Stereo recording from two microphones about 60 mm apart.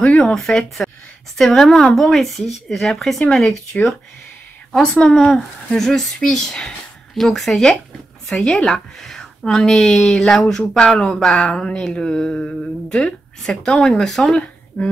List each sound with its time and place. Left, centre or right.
0.0 s speech: left
0.3 s speech: centre
14.8 s speech: left